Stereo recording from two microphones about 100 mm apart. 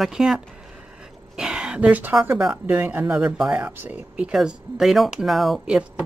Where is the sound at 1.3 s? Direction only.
5° right (ahead or behind).